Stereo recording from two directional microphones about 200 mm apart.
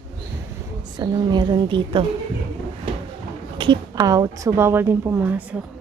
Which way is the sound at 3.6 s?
20° right (ahead or behind).